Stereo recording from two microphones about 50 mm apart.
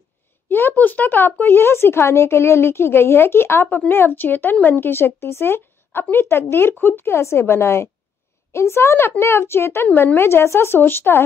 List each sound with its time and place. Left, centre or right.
0.5 s speech: left
1.7 s speech: left
7.2 s speech: left
10.8 s speech: left